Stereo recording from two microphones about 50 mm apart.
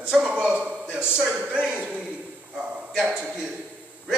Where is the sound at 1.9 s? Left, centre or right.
Right.